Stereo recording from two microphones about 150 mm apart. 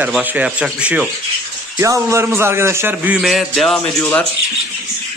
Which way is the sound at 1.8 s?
20° right (ahead or behind).